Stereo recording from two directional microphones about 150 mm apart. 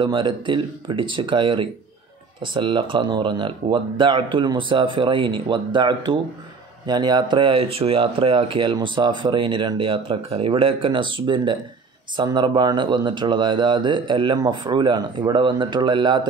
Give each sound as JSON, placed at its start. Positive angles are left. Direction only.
{"t": 0.0, "sound": "speech", "side_deg": -30}